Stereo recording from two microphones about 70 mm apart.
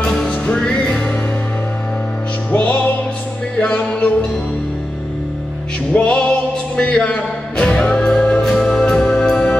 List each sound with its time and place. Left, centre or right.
0.0 s music: centre
2.5 s music: left
5.9 s music: centre